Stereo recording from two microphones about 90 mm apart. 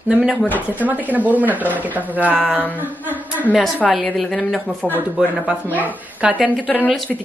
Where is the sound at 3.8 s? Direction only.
15° left (ahead or behind).